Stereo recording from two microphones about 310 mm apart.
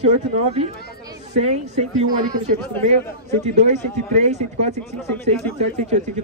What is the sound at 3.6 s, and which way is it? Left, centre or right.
Speech, right.